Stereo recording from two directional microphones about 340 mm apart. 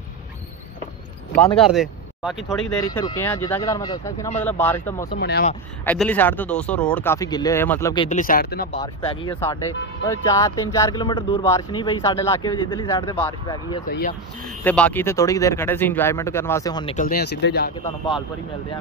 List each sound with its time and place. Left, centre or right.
1.6 s speech: centre
2.8 s speech: centre
5.1 s speech: left
5.9 s speech: centre; by 8.8 s left
8.8 s speech: centre
13.8 s speech: left
14.6 s speech: centre; by 17.7 s left